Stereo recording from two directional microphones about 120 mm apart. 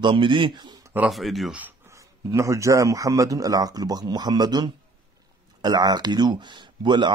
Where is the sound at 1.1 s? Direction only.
Centre (ahead or behind).